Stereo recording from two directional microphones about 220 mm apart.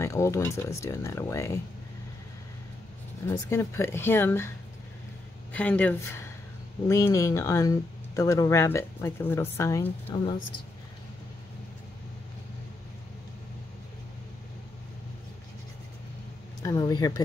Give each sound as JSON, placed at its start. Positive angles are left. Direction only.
{"t": 0.0, "sound": "a woman's voice", "side_deg": 15}
{"t": 3.3, "sound": "a woman's voice", "side_deg": 10}
{"t": 5.5, "sound": "a woman's voice", "side_deg": 5}
{"t": 16.6, "sound": "a woman's voice", "side_deg": 15}